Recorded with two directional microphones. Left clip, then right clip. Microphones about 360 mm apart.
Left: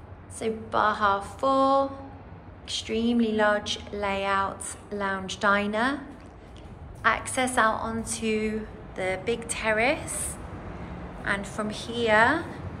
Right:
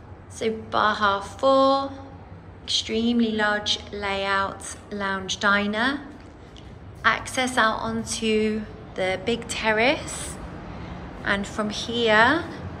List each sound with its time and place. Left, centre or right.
0.4 s a woman's voice: centre
7.0 s a woman's voice: centre
11.2 s a woman's voice: centre